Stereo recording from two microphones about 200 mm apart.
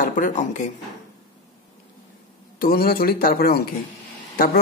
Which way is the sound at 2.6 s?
45° left (ahead or behind).